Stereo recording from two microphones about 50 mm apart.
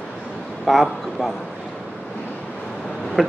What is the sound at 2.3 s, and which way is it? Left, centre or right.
Waves, left.